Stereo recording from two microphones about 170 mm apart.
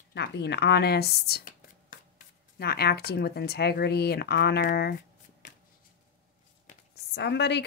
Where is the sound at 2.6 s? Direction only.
70° left (ahead or behind).